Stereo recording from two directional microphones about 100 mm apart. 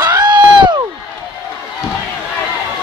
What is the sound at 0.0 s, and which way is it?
Crowd, 45° right (ahead or behind).